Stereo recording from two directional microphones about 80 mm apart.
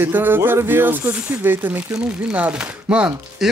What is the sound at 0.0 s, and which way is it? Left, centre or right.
Speech, right.